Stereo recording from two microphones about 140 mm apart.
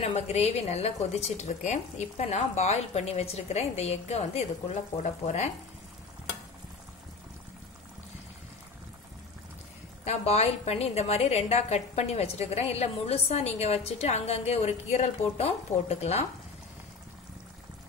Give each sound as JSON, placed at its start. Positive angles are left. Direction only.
{"t": 0.0, "sound": "a woman's voice", "side_deg": 50}
{"t": 10.0, "sound": "a woman's voice", "side_deg": 50}